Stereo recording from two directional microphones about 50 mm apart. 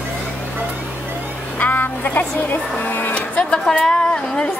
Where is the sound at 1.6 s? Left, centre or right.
Left.